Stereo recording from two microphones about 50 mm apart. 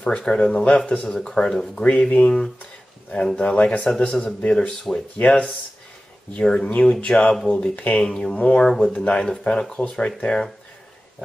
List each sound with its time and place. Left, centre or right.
0.0 s speech: centre
1.9 s speech: left
3.3 s speech: left
4.6 s speech: centre
6.3 s speech: centre
8.4 s speech: left
9.1 s speech: centre